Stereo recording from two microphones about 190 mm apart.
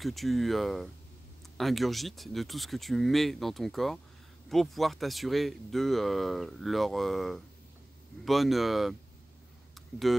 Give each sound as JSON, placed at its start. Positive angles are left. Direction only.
{"t": 0.0, "sound": "speech", "side_deg": 0}